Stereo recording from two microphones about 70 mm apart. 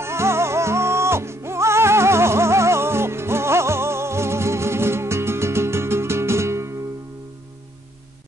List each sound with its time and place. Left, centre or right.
0.0 s music: right